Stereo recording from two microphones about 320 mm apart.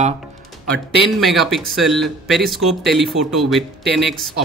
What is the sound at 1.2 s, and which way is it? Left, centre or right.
Speech, centre.